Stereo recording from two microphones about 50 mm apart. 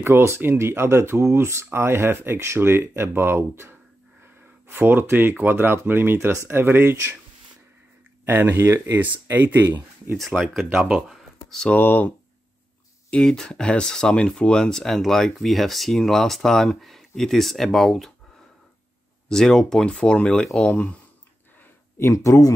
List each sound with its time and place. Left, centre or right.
0.0 s speech: right
4.6 s speech: right
6.1 s speech: right
8.3 s speech: right
8.5 s speech: right
8.9 s speech: right
10.1 s speech: centre
11.4 s speech: centre
11.7 s speech: left
13.2 s speech: centre
19.2 s speech: centre
21.9 s speech: left